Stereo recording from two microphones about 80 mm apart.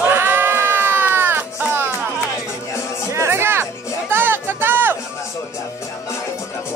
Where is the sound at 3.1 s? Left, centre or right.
Right.